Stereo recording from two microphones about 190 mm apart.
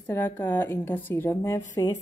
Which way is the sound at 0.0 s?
10° left (ahead or behind).